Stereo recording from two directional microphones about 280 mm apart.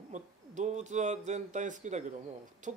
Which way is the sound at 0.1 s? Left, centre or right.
Right.